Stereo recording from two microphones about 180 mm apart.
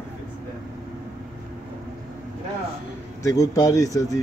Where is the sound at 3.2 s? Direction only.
20° left (ahead or behind).